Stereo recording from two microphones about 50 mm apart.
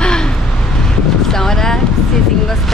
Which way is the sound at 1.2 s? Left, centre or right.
Centre.